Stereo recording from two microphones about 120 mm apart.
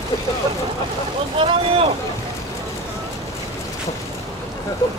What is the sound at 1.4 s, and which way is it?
Boat, 50° right (ahead or behind).